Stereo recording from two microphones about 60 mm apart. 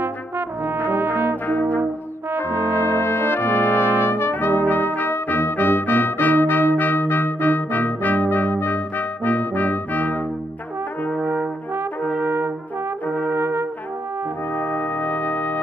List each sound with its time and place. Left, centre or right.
0.0 s brass instrument: right
1.5 s brass instrument: left
2.5 s brass instrument: right
2.8 s brass instrument: left
11.2 s brass instrument: right
14.5 s brass instrument: left